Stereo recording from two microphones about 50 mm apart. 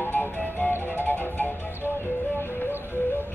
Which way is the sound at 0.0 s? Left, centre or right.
Left.